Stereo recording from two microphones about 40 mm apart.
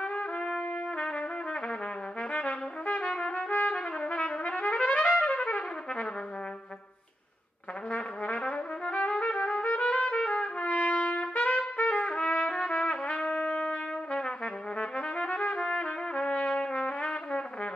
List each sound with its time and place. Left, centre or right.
0.0 s trumpet: left
7.9 s trumpet: left
10.6 s trumpet: left
14.2 s trumpet: left